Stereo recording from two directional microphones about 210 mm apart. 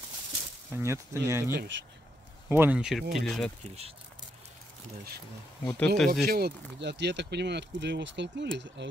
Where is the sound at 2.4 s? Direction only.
10° right (ahead or behind).